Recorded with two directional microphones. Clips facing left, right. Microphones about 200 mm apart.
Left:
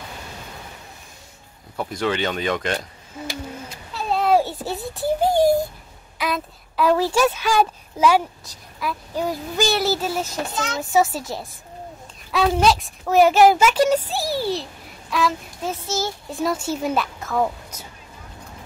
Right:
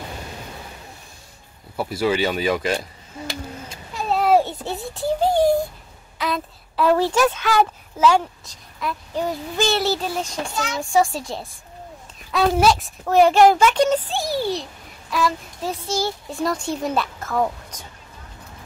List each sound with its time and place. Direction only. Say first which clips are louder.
1.8 s speech: right 3 dB; 5° right (ahead or behind)
3.6 s child singing: right 2 dB; 10° right (ahead or behind); by 5.6 s 10° left (ahead or behind)
6.1 s a child's voice: even; 5° left (ahead or behind)